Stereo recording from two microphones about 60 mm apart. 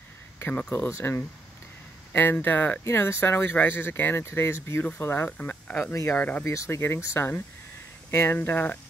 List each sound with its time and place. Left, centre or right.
0.7 s speech: left
2.1 s speech: left
2.9 s speech: left
4.3 s speech: left
6.4 s speech: left
6.8 s speech: left
8.4 s speech: left